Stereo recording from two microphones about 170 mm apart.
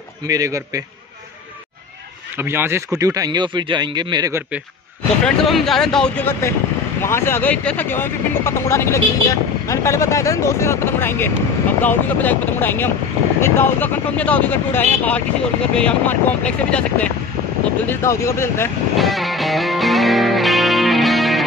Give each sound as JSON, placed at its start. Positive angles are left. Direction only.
{"t": 0.3, "sound": "speech", "side_deg": -20}
{"t": 2.3, "sound": "speech", "side_deg": -15}
{"t": 5.2, "sound": "speech", "side_deg": 0}
{"t": 18.9, "sound": "music", "side_deg": 0}